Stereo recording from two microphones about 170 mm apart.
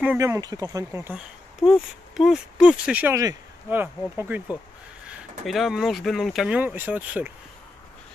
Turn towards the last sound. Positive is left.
turn(degrees=-10)  # may be behind; listen again after turning